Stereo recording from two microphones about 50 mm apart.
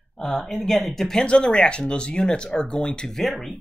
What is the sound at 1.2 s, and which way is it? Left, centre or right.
Speech, centre.